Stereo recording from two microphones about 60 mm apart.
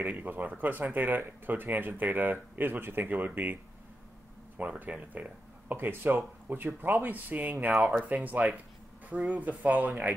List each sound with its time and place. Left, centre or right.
0.0 s speech: right
4.6 s speech: right